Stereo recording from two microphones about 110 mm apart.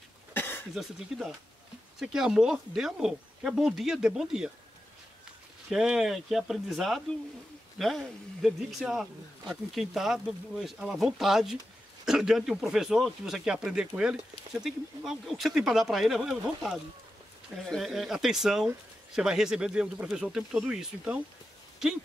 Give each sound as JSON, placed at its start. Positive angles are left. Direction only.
{"t": 0.3, "sound": "a sound", "side_deg": 20}
{"t": 0.7, "sound": "speech", "side_deg": -5}
{"t": 5.7, "sound": "speech", "side_deg": -5}